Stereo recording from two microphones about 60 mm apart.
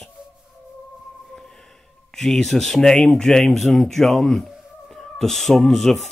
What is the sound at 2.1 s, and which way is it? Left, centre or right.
Speech, centre.